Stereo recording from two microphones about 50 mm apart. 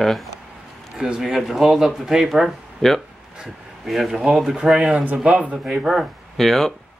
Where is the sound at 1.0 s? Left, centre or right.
Centre.